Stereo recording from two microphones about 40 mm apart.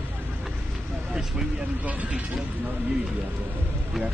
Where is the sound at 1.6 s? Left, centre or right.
Right.